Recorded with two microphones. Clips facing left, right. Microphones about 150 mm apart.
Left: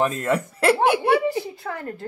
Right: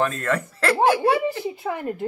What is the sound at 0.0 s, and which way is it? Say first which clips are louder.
Speech: left 1 dB; 20° left (ahead or behind).